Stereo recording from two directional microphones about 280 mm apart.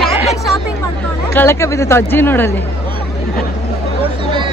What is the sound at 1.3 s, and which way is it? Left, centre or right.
Speech, centre.